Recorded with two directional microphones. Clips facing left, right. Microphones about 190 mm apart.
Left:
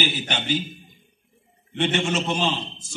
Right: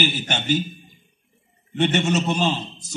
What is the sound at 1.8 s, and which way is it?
A man's voice, 45° right (ahead or behind).